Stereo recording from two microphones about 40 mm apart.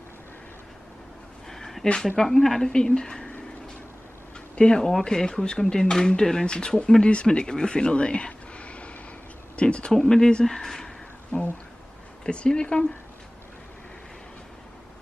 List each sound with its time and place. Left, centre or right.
1.5 s a sound: centre
2.1 s speech: centre
2.7 s speech: centre
4.6 s speech: left
9.9 s speech: centre
11.3 s speech: left
12.3 s speech: left